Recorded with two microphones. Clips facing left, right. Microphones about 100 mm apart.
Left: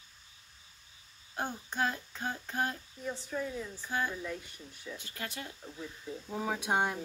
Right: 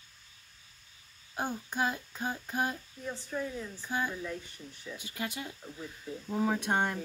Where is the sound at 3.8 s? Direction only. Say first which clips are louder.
Right 1 dB; 15° right (ahead or behind).